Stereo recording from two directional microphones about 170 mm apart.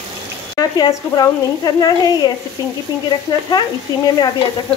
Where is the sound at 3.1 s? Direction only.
25° left (ahead or behind).